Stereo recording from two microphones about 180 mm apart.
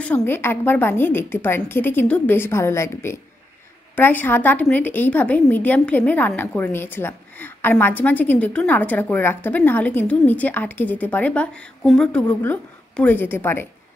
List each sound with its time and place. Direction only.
0.0 s a woman's voice: 10° left (ahead or behind)